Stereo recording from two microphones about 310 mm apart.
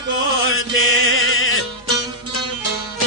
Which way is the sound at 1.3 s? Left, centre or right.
Left.